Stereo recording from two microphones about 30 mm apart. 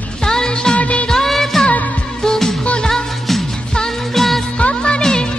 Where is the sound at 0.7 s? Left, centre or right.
Left.